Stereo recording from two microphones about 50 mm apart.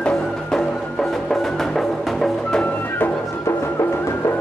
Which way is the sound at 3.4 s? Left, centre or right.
Left.